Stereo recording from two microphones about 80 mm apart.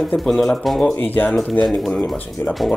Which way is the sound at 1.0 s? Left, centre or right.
Left.